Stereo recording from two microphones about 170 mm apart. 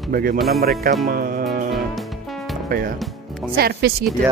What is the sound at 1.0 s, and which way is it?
Music, 55° right (ahead or behind).